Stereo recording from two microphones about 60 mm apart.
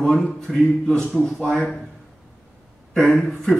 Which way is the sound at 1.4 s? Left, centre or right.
Centre.